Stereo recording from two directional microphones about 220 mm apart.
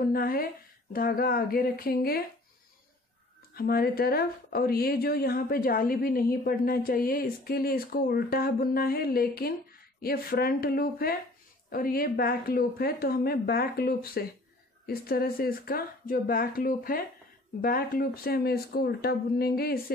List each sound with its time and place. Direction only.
0.0 s a woman's voice: 40° left (ahead or behind)
3.5 s a woman's voice: 45° left (ahead or behind)